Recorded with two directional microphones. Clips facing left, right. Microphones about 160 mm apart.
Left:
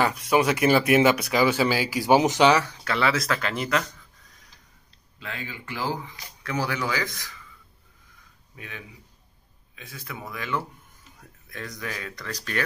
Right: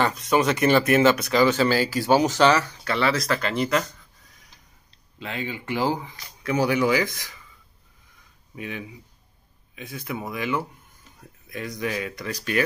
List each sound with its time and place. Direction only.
0.0 s speech: 10° left (ahead or behind)
2.8 s speech: centre (ahead or behind)
5.2 s speech: 20° right (ahead or behind)
8.5 s speech: 20° right (ahead or behind)